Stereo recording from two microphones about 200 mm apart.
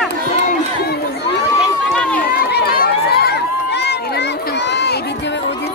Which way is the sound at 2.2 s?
50° left (ahead or behind).